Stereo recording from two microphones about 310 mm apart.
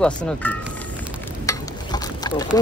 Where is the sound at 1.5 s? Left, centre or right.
Centre.